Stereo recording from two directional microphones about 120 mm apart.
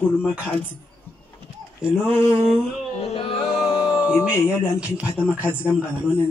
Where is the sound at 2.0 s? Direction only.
20° left (ahead or behind).